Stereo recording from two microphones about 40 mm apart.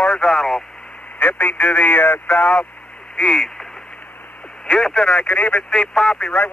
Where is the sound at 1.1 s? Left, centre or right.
Left.